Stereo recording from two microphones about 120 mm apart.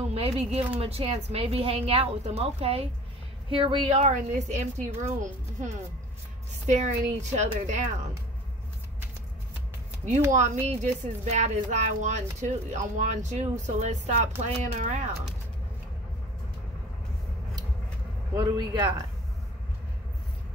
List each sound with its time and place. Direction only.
0.1 s a sound: 55° right (ahead or behind)
0.7 s a woman's voice: 60° right (ahead or behind)
4.0 s speech: 75° right (ahead or behind)
10.3 s speech: 85° right
18.3 s a man's voice: 40° right (ahead or behind)